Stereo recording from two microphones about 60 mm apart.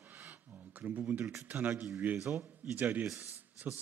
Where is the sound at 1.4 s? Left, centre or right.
Right.